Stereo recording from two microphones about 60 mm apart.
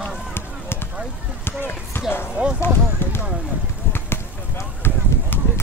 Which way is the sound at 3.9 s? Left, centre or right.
Left.